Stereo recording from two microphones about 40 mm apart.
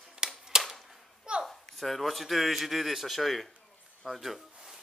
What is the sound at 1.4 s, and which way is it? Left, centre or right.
Speech, centre.